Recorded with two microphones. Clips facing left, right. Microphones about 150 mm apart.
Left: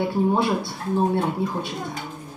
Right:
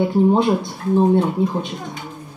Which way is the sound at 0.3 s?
20° right (ahead or behind).